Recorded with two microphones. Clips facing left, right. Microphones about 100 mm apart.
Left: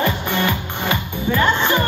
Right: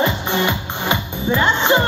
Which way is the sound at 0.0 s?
20° right (ahead or behind).